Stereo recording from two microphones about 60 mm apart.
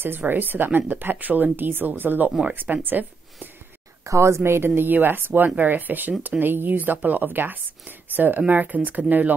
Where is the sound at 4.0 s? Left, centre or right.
Right.